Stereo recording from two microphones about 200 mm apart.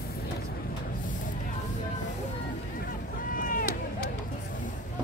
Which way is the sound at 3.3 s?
40° left (ahead or behind).